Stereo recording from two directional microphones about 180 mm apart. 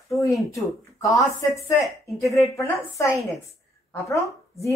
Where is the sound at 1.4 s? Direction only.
20° left (ahead or behind).